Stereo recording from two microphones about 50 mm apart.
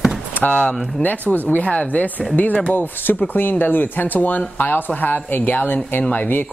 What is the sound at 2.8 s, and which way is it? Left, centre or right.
Speech, left.